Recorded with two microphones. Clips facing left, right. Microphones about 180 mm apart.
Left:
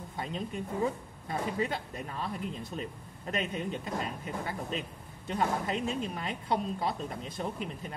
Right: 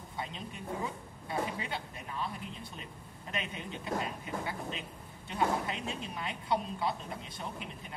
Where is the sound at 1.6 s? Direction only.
40° left (ahead or behind).